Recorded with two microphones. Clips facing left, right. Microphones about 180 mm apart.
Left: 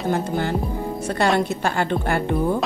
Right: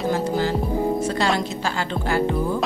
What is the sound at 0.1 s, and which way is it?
Speech, 55° left (ahead or behind).